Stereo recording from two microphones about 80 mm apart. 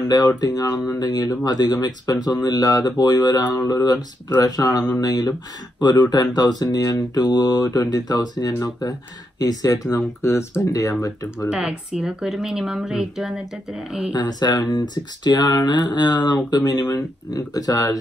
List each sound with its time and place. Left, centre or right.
0.4 s speech: left
9.9 s speech: left
10.6 s speech: left
11.5 s speech: centre
14.1 s speech: left